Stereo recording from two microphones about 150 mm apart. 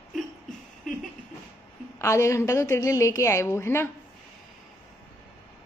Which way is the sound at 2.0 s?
20° left (ahead or behind).